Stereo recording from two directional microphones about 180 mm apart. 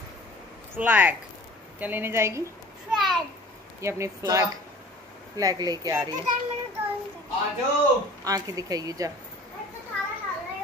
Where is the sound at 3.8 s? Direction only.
15° right (ahead or behind).